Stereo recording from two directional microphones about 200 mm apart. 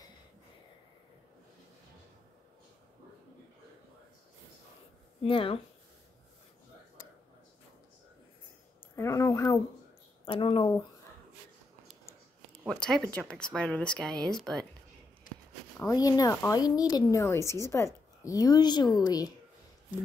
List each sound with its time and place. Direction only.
5.2 s a woman's voice: 25° left (ahead or behind)
8.9 s a sound: 15° left (ahead or behind)
10.2 s speech: 25° left (ahead or behind)
12.6 s speech: 5° left (ahead or behind)
15.8 s a woman's voice: 15° left (ahead or behind)